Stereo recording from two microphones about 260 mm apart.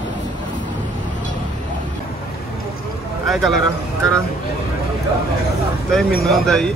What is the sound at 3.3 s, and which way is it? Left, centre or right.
Speech, centre.